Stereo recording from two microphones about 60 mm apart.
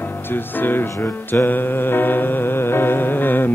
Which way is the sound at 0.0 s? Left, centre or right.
Left.